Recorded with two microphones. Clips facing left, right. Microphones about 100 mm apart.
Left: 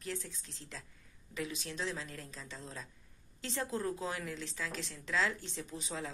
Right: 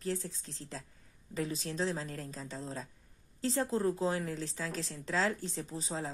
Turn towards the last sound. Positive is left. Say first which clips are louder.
# right 3 dB
turn(degrees=-35)  # may be behind; listen again after turning